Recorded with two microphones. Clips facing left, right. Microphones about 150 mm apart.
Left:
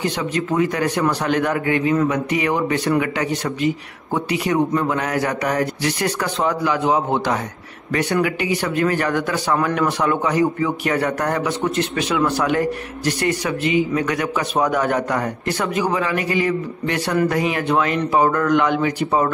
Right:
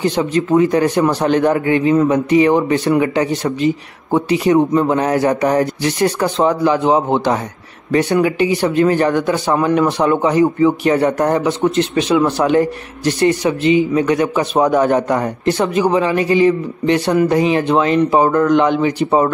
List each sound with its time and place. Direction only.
0.0 s speech: 30° right (ahead or behind)